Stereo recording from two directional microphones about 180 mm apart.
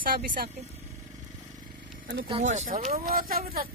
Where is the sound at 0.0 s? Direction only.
55° right (ahead or behind).